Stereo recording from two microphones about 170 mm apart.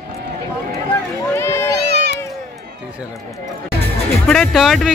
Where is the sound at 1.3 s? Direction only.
15° left (ahead or behind).